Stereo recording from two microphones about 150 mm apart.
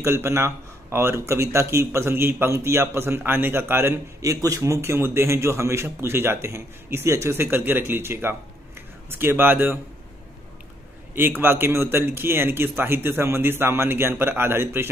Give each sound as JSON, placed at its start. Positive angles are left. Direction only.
{"t": 0.0, "sound": "speech", "side_deg": -20}
{"t": 11.1, "sound": "speech", "side_deg": -15}